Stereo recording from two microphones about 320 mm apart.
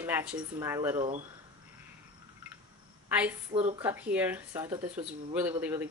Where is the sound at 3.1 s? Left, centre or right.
Centre.